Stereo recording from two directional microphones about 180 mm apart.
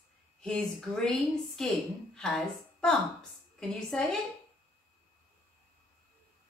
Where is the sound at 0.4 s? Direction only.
5° left (ahead or behind).